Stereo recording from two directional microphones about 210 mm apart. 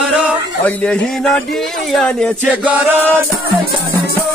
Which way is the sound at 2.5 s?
5° right (ahead or behind).